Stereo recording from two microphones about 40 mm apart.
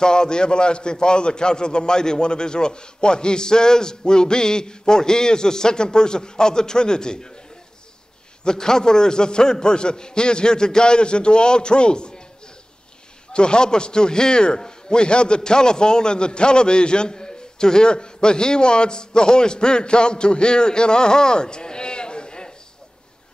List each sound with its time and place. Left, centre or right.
0.0 s a man's voice: centre
8.5 s a man's voice: centre
13.3 s a man's voice: left